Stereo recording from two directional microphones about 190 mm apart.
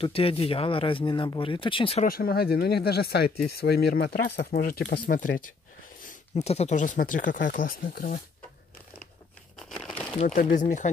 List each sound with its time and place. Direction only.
0.0 s speech: 30° left (ahead or behind)
2.0 s speech: 50° left (ahead or behind)
6.0 s speech: 35° left (ahead or behind)
9.6 s crumpling: centre (ahead or behind)
10.2 s speech: 40° left (ahead or behind)